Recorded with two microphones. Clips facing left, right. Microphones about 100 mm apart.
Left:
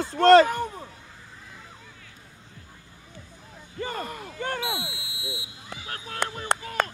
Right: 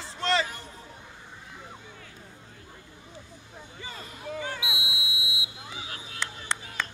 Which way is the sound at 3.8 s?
55° left (ahead or behind).